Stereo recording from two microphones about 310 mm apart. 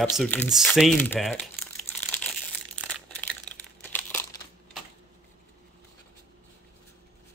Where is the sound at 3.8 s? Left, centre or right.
Centre.